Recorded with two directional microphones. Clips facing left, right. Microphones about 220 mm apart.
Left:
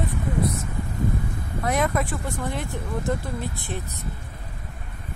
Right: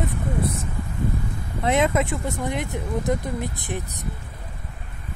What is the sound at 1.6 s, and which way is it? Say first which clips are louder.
Speech: right 3 dB; 25° right (ahead or behind).